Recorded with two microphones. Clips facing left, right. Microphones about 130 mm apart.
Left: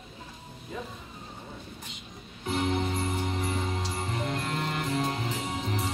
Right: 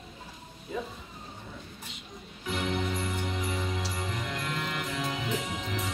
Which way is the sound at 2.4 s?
30° left (ahead or behind).